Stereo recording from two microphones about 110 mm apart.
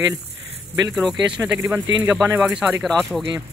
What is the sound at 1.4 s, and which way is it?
Speech, 25° right (ahead or behind).